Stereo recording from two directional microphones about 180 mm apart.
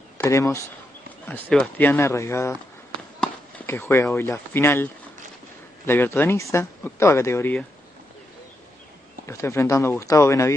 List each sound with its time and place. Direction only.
0.2 s speech: 15° left (ahead or behind)
1.2 s speech: 5° left (ahead or behind)
9.2 s speech: 15° left (ahead or behind)